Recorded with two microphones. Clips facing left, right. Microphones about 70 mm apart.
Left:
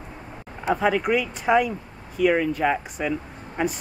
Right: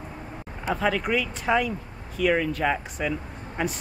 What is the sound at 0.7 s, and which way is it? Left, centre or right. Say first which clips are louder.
Speech: left 4 dB; centre.